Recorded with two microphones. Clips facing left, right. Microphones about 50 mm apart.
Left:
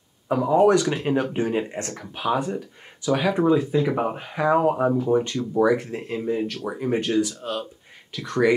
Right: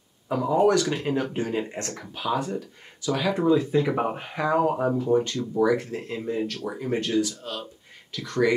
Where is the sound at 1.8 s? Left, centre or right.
Centre.